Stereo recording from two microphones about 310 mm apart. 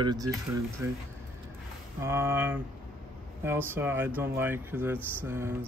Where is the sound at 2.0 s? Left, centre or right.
Centre.